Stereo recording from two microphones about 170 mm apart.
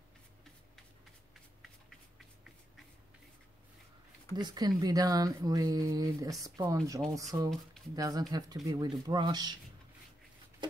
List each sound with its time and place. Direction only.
4.4 s speech: 25° right (ahead or behind)